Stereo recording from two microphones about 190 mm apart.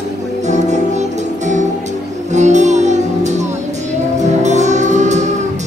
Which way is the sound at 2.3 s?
40° right (ahead or behind).